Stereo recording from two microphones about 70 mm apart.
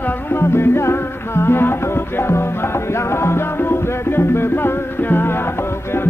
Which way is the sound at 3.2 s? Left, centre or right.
Left.